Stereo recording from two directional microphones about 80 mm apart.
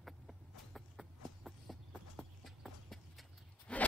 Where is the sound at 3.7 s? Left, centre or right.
Centre.